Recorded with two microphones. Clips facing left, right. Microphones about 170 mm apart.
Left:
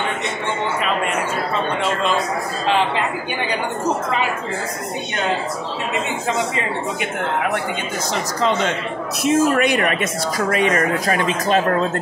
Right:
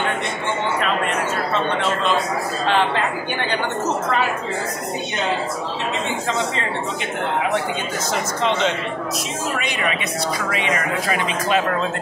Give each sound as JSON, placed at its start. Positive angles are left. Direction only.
{"t": 9.2, "sound": "speech", "side_deg": 55}